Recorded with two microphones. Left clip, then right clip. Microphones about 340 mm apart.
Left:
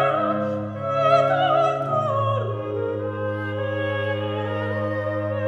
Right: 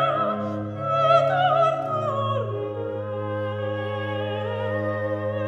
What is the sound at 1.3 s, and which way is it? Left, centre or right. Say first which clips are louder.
Opera: left 1 dB; right.